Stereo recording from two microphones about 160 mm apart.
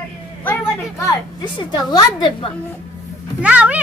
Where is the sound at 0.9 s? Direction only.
20° left (ahead or behind).